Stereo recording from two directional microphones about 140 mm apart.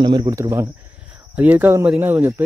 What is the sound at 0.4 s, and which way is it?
Speech, 20° right (ahead or behind).